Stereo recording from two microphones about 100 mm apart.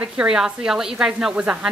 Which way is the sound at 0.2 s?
5° right (ahead or behind).